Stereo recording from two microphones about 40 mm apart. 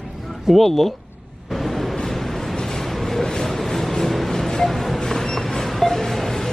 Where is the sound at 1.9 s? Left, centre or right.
Centre.